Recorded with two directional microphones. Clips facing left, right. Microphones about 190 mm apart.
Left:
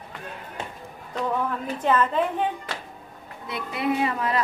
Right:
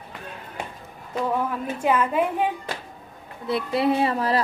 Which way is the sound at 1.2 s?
10° right (ahead or behind).